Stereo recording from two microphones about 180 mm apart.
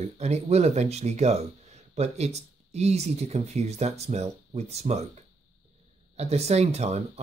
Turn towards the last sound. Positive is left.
turn(degrees=-35)  # may be behind; listen again after turning